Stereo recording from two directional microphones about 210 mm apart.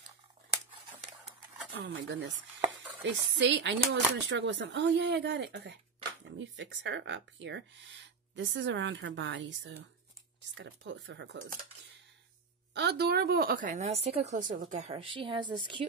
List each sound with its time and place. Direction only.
2.0 s speech: 60° right (ahead or behind)
12.7 s a woman's voice: 50° right (ahead or behind); by 15.8 s 20° right (ahead or behind)